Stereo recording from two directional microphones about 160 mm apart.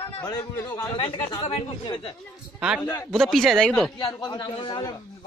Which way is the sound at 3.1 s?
Centre (ahead or behind).